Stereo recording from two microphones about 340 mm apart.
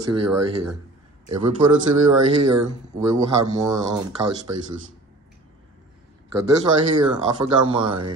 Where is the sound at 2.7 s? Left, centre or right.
Centre.